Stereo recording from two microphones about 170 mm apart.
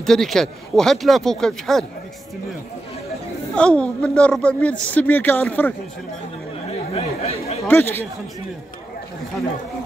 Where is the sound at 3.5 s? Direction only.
5° left (ahead or behind).